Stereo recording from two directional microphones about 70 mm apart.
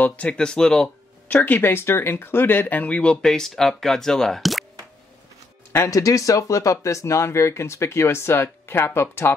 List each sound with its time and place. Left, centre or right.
0.0 s speech: centre
1.3 s speech: left; by 4.6 s centre
5.9 s speech: left